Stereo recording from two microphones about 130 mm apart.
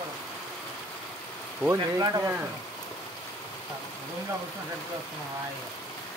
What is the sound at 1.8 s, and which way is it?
Speech, 30° right (ahead or behind).